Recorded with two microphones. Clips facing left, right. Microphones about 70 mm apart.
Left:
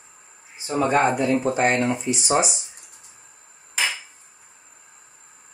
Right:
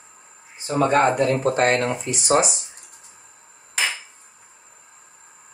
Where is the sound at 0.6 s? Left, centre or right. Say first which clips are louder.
Right 2 dB; right.